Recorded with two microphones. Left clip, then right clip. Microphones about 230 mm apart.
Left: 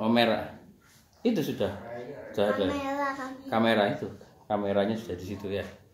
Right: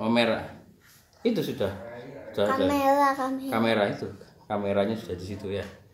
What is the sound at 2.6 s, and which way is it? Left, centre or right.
Child singing, right.